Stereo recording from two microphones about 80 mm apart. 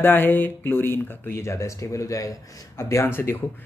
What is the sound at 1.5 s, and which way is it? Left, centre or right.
Speech, left.